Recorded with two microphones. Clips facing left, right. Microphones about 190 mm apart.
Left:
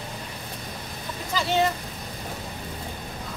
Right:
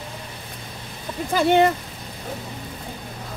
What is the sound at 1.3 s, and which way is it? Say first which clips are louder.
Speech: right 7 dB; 55° right (ahead or behind).